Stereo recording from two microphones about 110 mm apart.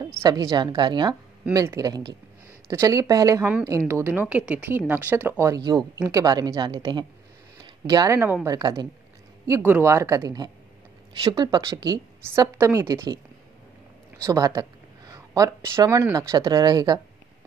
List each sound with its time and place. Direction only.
0.2 s a woman's voice: 35° right (ahead or behind)
1.5 s a woman's voice: 30° right (ahead or behind)
5.4 s a woman's voice: 35° right (ahead or behind)
7.8 s a woman's voice: 35° right (ahead or behind)
9.6 s a woman's voice: 20° right (ahead or behind); by 12.0 s 35° right (ahead or behind)
12.4 s speech: 25° right (ahead or behind)
14.2 s a sound: 35° right (ahead or behind)
16.0 s a woman's voice: 25° right (ahead or behind)